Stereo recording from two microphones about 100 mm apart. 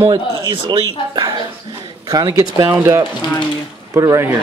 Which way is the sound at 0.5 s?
55° right (ahead or behind).